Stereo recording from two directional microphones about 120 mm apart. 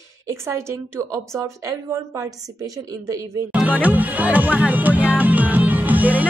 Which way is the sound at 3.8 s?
15° right (ahead or behind).